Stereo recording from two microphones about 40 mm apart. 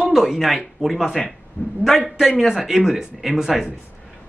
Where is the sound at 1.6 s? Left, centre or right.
Left.